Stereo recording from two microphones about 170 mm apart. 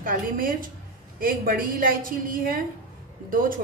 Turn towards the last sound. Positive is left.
turn(degrees=-55)  # may be behind; listen again after turning